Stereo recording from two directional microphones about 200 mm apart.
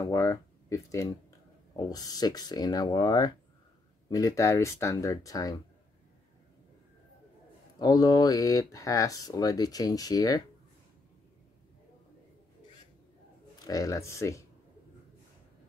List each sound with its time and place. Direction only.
0.0 s speech: 15° left (ahead or behind)
7.8 s speech: 20° left (ahead or behind)
13.7 s speech: 15° left (ahead or behind)